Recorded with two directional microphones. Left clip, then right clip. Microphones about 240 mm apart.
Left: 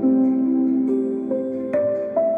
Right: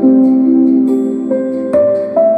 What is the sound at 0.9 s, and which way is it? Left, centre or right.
Music, right.